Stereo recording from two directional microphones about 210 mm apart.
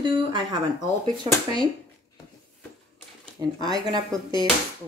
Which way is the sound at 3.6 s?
20° right (ahead or behind).